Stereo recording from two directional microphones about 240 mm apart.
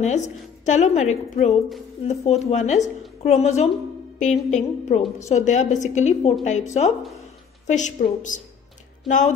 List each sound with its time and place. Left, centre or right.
0.0 s a woman's voice: left